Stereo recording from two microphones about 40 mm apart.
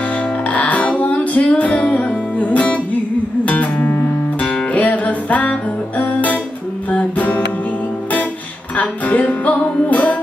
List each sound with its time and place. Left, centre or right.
0.1 s music: left
8.7 s music: left